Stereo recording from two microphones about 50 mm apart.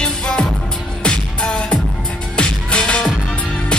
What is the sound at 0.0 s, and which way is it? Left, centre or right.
Music, centre.